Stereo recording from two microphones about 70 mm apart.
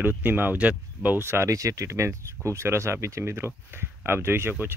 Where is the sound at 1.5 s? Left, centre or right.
Right.